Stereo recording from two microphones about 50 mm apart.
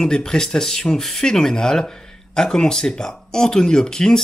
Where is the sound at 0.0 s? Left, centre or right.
Centre.